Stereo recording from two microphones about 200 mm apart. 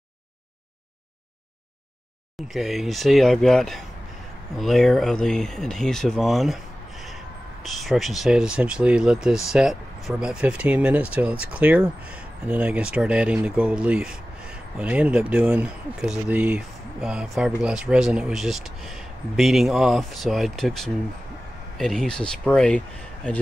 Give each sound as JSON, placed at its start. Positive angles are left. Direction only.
{"t": 2.4, "sound": "speech", "side_deg": 0}
{"t": 7.6, "sound": "speech", "side_deg": 0}